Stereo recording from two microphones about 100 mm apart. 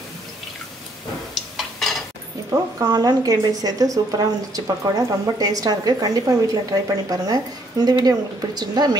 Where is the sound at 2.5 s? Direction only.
40° right (ahead or behind).